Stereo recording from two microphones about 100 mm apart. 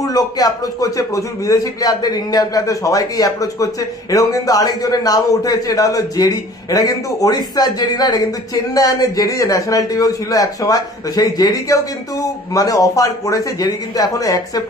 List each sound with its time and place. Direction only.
0.0 s a man's voice: 40° left (ahead or behind)